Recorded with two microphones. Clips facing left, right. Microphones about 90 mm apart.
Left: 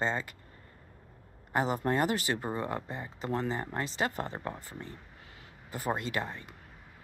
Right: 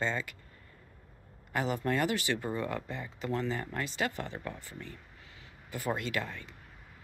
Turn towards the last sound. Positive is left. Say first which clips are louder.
# left 1 dB
turn(degrees=35)  # may be behind; listen again after turning